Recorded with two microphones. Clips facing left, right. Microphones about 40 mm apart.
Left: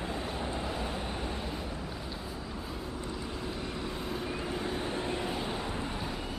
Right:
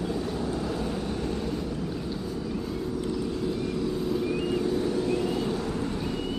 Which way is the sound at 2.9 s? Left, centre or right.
Left.